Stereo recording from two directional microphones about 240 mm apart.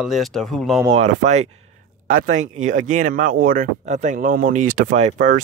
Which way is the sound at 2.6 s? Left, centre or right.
Right.